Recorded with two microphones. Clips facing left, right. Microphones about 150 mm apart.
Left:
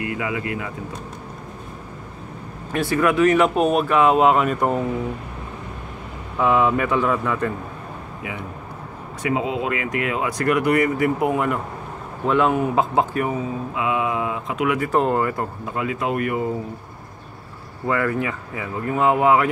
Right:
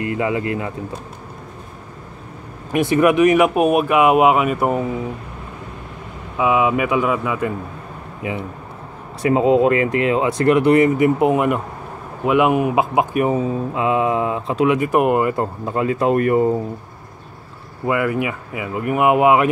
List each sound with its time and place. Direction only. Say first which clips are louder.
0.0 s speech: right 5 dB; 30° right (ahead or behind)
2.7 s speech: right 5 dB; 20° right (ahead or behind)
6.3 s speech: right 1 dB; 10° right (ahead or behind)
9.2 s speech: right 9 dB; 40° right (ahead or behind); by 13.4 s 20° right (ahead or behind)
13.7 s speech: right 4 dB; 35° right (ahead or behind)
14.8 s speech: right 4 dB; 15° right (ahead or behind)
15.6 s speech: right 7 dB; 35° right (ahead or behind)
17.8 s speech: right 3 dB; 15° right (ahead or behind)